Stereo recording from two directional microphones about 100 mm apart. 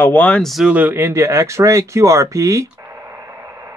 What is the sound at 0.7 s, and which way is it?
Speech, 15° right (ahead or behind).